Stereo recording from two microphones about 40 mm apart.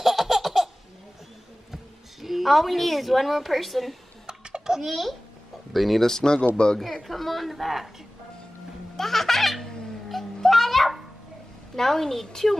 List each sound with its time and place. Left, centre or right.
0.0 s laughter: centre
2.2 s a woman's voice: centre
4.3 s a sound: centre
4.8 s a woman's voice: centre
6.0 s a woman's voice: centre
6.8 s a woman's voice: centre
8.9 s a sound: centre
10.0 s music: centre
11.7 s a woman's voice: centre